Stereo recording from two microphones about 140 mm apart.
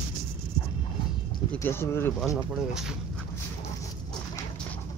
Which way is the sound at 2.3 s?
5° right (ahead or behind).